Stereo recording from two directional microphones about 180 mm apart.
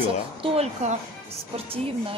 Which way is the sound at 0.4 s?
35° right (ahead or behind).